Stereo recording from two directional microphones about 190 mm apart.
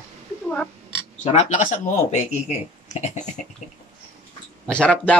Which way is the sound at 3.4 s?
40° left (ahead or behind).